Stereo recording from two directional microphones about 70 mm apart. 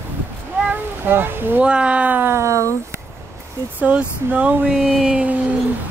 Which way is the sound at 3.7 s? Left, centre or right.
Centre.